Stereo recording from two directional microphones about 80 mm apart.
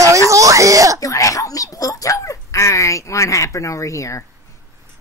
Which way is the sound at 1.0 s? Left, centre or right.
Left.